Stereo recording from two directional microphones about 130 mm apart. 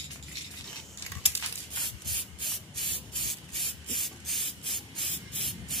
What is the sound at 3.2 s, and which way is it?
Spray, centre (ahead or behind).